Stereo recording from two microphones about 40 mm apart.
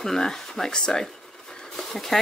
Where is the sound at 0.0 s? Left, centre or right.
Centre.